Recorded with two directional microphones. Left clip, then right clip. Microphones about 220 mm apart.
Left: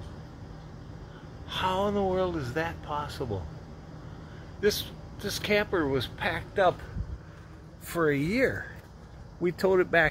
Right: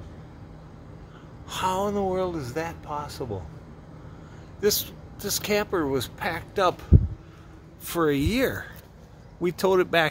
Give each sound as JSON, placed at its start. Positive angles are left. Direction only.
{"t": 1.5, "sound": "speech", "side_deg": -15}
{"t": 4.6, "sound": "speech", "side_deg": -20}
{"t": 7.8, "sound": "speech", "side_deg": -15}